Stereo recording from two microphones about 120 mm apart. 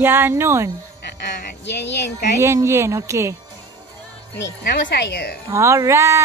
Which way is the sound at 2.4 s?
25° right (ahead or behind).